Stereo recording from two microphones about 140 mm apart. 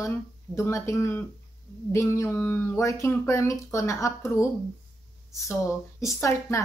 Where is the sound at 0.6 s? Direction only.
20° left (ahead or behind).